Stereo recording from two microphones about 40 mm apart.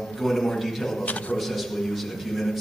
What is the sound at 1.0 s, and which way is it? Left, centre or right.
Speech, left.